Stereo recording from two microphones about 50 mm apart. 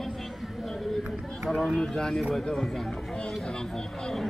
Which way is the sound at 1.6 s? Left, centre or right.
Centre.